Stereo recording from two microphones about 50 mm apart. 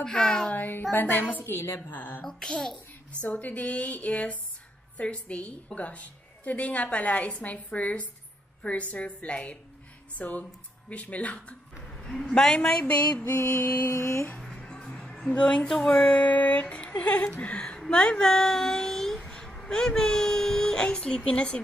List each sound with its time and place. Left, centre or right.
0.0 s a child's voice: centre
0.5 s a child's voice: left
2.2 s a child's voice: centre
3.2 s a woman's voice: left
11.9 s a woman's voice: centre
12.8 s a woman's voice: left
13.8 s a sound: left
14.4 s music: centre
15.3 s a woman's voice: left